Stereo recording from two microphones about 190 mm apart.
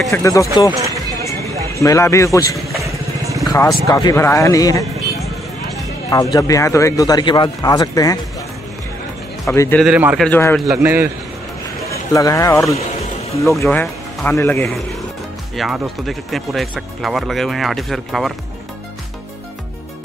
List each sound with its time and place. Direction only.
0.1 s a man's voice: 15° left (ahead or behind)
1.8 s a man's voice: 15° left (ahead or behind)
2.8 s vehicle: 15° right (ahead or behind)
3.4 s a man's voice: 20° left (ahead or behind)
6.0 s speech: 20° left (ahead or behind)
9.8 s speech: 5° right (ahead or behind)
10.2 s a man's voice: 5° left (ahead or behind)
10.7 s a man's voice: 10° right (ahead or behind)
12.1 s a man's voice: 15° left (ahead or behind); by 18.3 s centre (ahead or behind)